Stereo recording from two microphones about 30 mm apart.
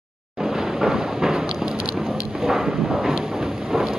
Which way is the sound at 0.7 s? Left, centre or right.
Centre.